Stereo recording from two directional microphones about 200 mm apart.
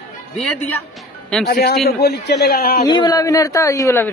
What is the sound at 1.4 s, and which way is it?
A man's voice, 55° left (ahead or behind).